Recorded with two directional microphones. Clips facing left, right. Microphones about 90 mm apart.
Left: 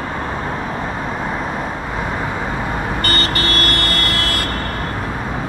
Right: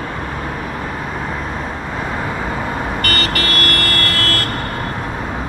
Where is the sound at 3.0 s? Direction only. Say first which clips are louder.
Even; 30° left (ahead or behind).